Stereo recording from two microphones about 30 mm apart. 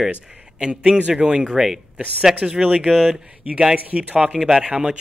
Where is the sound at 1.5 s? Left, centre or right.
Centre.